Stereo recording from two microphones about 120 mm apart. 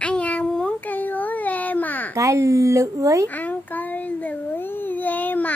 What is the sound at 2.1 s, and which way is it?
A woman's voice, 25° right (ahead or behind).